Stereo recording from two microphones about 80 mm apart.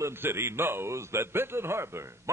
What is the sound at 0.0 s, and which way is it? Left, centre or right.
A man's voice, right.